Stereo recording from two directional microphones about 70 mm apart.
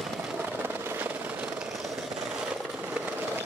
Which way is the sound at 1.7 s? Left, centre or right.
Centre.